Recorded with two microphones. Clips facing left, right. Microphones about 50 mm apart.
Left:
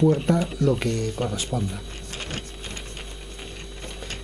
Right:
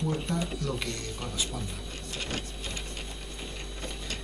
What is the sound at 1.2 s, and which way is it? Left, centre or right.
Speech, left.